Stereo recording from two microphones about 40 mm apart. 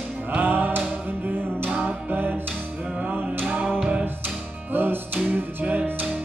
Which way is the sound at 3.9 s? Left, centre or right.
Right.